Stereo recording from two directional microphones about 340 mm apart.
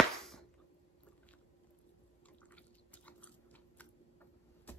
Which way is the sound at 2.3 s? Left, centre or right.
Centre.